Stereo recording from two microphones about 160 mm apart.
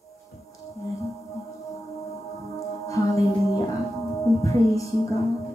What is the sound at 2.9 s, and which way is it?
Music, 20° left (ahead or behind).